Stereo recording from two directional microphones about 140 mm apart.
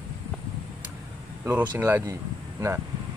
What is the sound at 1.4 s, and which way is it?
Speech, 15° right (ahead or behind).